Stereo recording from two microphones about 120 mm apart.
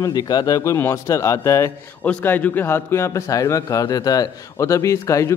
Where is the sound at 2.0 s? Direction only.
15° left (ahead or behind).